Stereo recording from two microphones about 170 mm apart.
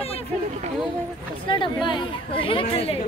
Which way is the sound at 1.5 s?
30° left (ahead or behind).